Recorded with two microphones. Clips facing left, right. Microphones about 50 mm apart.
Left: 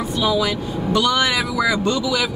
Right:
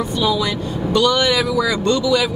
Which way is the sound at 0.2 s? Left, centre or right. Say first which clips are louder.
Left 1 dB; centre.